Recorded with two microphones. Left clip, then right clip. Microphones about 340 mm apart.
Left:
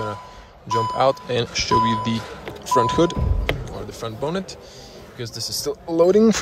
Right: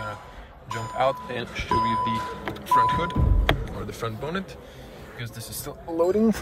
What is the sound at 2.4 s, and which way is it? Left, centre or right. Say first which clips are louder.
Speech: left 1 dB; centre.